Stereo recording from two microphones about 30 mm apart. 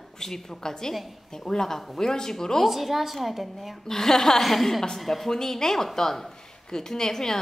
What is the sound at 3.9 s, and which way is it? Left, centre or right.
A woman's voice, centre.